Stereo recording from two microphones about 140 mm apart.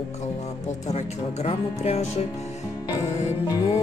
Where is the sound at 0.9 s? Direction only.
50° left (ahead or behind).